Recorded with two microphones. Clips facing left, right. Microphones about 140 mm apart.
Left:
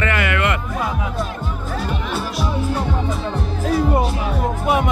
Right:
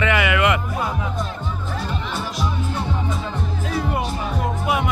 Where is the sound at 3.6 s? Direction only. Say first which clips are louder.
Left 7 dB; 35° left (ahead or behind).